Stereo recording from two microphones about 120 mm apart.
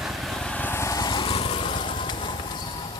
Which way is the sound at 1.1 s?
45° left (ahead or behind).